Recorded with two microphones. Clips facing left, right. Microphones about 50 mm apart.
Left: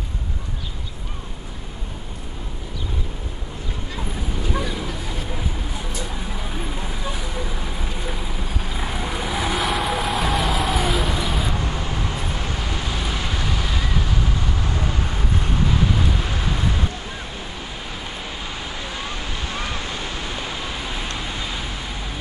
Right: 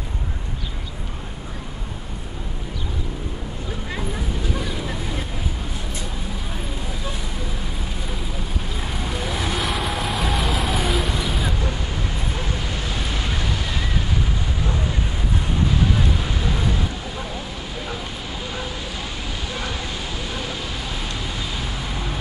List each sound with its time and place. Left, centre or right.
8.7 s vehicle: centre
19.6 s vehicle: left